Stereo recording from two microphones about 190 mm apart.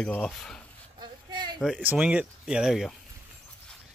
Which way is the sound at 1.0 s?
25° right (ahead or behind).